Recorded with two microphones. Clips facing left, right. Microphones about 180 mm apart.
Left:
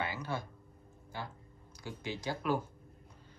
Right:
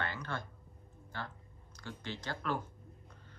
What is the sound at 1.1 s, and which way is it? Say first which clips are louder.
Speech: left 1 dB; 10° left (ahead or behind).